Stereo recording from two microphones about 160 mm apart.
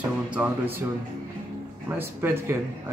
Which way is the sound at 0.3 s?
10° right (ahead or behind).